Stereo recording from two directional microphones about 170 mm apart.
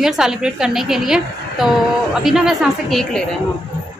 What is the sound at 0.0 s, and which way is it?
A woman's voice, 5° right (ahead or behind).